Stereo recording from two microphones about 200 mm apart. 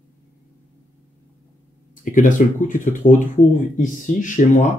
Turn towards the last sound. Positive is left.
turn(degrees=40)  # may be behind; listen again after turning